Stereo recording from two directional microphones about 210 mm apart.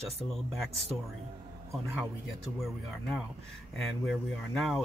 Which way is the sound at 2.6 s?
Centre (ahead or behind).